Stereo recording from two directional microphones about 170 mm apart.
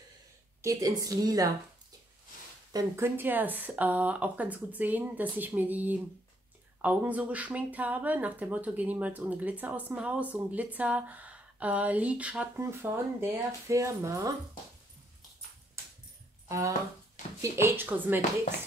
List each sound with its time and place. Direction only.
0.6 s a woman's voice: 20° right (ahead or behind)
2.7 s speech: 20° right (ahead or behind)
16.4 s speech: 20° right (ahead or behind)